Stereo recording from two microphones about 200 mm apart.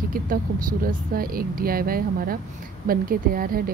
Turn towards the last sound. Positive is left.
turn(degrees=-45)  # may be behind; listen again after turning